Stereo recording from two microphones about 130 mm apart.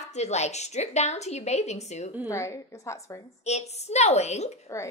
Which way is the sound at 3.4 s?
55° left (ahead or behind).